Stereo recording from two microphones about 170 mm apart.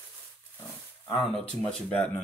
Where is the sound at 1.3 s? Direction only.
5° left (ahead or behind).